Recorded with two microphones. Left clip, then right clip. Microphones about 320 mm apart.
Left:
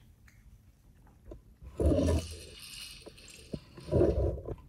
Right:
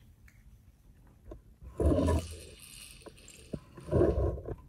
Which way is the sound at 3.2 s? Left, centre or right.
Centre.